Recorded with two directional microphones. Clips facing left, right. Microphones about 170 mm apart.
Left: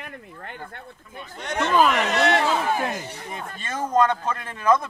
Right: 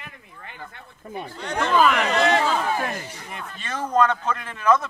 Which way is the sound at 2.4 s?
5° left (ahead or behind).